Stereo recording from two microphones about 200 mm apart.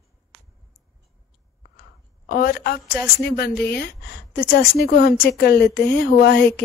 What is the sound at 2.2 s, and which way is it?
Speech, 45° left (ahead or behind).